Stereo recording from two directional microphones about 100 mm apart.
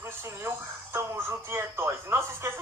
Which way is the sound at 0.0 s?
25° right (ahead or behind).